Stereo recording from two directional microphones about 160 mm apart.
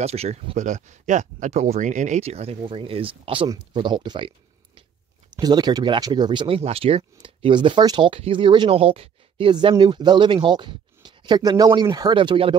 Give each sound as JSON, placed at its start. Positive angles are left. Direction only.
{"t": 0.0, "sound": "speech", "side_deg": -40}
{"t": 5.3, "sound": "speech", "side_deg": -25}